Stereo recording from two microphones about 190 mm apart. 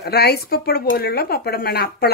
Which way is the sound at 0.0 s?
55° left (ahead or behind).